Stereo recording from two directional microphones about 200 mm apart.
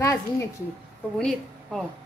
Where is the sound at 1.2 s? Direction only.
Centre (ahead or behind).